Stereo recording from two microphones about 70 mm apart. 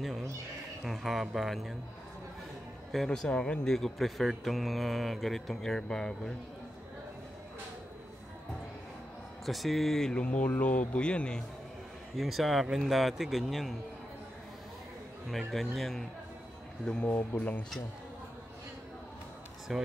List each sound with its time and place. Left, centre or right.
0.8 s speech: centre
3.1 s speech: centre
9.5 s speech: centre
10.2 s speech: left
12.2 s speech: centre
15.2 s speech: centre
16.8 s speech: centre
19.7 s speech: centre